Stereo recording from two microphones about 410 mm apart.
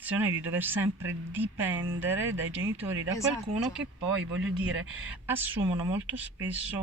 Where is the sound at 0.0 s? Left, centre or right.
Centre.